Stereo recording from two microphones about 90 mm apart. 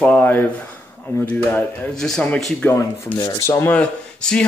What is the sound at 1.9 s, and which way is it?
Speech, 5° left (ahead or behind).